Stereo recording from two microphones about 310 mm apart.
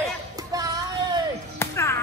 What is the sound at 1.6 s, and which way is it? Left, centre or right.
Music, centre.